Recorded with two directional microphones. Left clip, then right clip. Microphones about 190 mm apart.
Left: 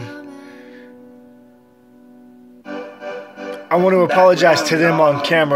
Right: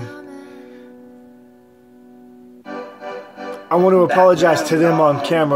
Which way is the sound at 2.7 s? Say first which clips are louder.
Left 1 dB; 45° left (ahead or behind).